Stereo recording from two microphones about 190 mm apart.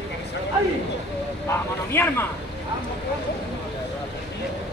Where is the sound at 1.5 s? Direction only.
10° left (ahead or behind).